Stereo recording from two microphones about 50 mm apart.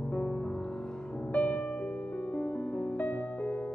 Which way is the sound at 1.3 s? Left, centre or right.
Left.